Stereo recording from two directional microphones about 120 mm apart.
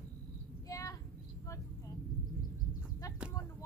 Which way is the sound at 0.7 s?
25° left (ahead or behind).